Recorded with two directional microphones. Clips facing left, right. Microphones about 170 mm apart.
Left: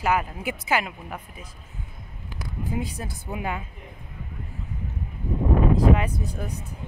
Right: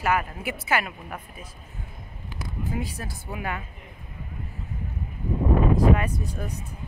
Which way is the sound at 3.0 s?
20° left (ahead or behind).